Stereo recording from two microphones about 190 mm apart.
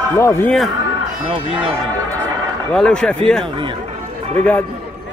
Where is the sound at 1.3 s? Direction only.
25° right (ahead or behind).